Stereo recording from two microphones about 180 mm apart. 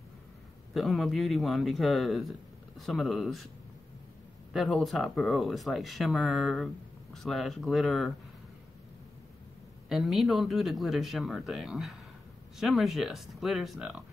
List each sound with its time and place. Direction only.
0.7 s speech: centre (ahead or behind)
4.5 s speech: centre (ahead or behind)
9.8 s speech: centre (ahead or behind)